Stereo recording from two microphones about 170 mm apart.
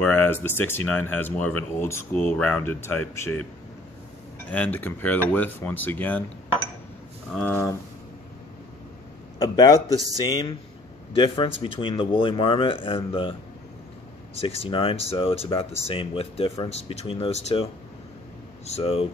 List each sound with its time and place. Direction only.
0.0 s speech: 10° left (ahead or behind)
4.5 s speech: 10° left (ahead or behind)
7.3 s speech: 10° left (ahead or behind)
9.4 s a man's voice: 25° left (ahead or behind)
9.8 s speech: 20° right (ahead or behind)
10.2 s a man's voice: 25° left (ahead or behind)
14.4 s speech: 35° left (ahead or behind)
18.7 s speech: 35° left (ahead or behind)